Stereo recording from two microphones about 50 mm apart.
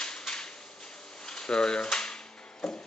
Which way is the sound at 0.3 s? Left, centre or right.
Centre.